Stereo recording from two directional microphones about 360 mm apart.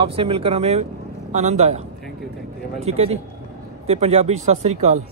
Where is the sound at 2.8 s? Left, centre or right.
Centre.